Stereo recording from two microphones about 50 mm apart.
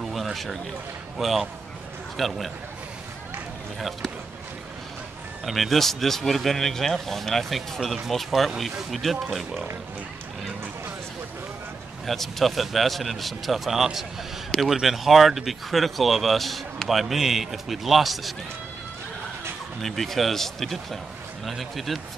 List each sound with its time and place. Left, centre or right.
0.0 s a sound: centre
1.1 s speech: centre
5.4 s speech: centre
12.1 s speech: centre
19.8 s speech: centre